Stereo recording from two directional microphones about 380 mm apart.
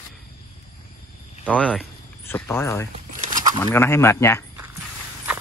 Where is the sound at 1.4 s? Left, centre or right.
Centre.